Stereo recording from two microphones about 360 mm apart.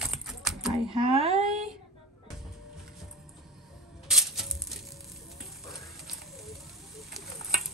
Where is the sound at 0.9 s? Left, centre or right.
Centre.